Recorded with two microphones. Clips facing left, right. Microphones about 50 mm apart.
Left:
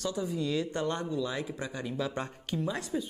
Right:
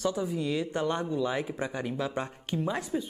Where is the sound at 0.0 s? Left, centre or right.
Centre.